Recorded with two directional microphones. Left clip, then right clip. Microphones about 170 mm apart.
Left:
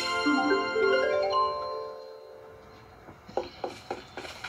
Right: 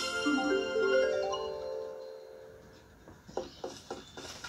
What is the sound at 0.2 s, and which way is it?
Music, 10° left (ahead or behind).